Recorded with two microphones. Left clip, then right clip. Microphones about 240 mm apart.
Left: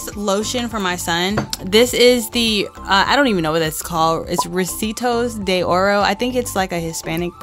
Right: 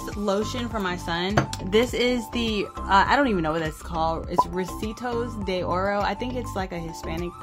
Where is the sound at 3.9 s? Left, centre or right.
Left.